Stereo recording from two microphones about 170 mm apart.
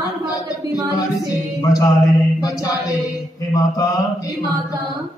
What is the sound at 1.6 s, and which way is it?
Mantra, 20° left (ahead or behind).